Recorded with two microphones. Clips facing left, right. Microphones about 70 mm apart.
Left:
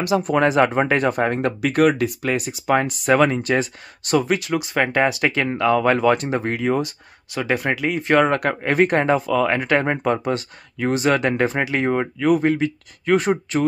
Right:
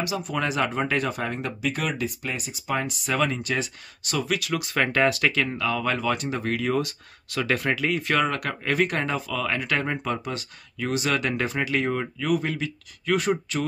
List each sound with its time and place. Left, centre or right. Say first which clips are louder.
0.0 s speech: left 9 dB; left; by 5.3 s centre
5.3 s speech: left 7 dB; left